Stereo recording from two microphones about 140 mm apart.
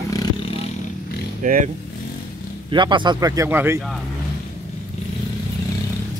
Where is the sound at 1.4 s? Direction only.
70° right (ahead or behind).